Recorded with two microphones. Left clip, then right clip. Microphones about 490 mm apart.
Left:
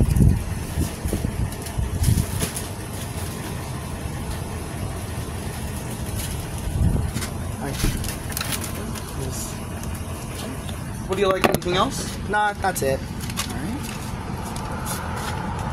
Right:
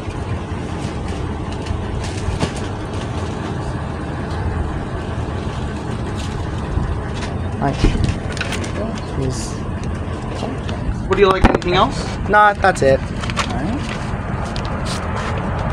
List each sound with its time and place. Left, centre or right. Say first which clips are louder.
11.1 s speech: right 6 dB; left
12.3 s speech: right 10 dB; left